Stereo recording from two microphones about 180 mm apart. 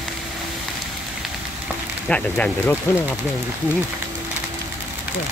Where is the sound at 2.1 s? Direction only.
5° left (ahead or behind).